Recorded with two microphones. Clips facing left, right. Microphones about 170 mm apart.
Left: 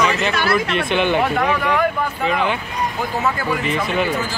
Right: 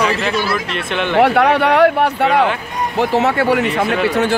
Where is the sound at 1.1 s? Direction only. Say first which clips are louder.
Right 6 dB; 75° right (ahead or behind).